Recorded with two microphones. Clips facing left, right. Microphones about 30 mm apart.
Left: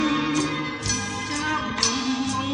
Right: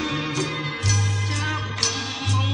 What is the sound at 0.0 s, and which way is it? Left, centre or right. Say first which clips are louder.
Music: left 3 dB; centre.